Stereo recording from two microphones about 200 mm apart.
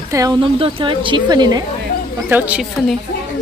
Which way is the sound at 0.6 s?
25° right (ahead or behind).